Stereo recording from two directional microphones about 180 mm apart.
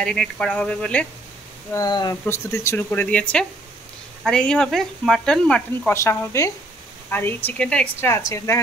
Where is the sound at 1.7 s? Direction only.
20° left (ahead or behind).